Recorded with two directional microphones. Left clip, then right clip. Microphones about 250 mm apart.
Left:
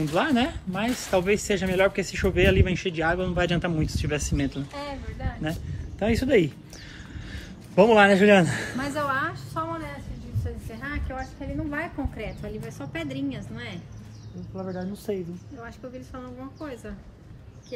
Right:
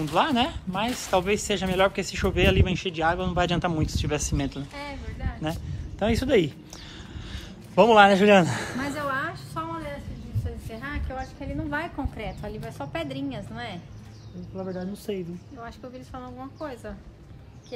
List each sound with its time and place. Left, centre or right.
0.0 s speech: centre
4.7 s speech: centre
5.4 s speech: right
7.7 s a woman's voice: centre
8.7 s a woman's voice: centre
10.8 s a sound: centre
11.7 s a woman's voice: centre
14.6 s speech: centre
16.2 s a woman's voice: right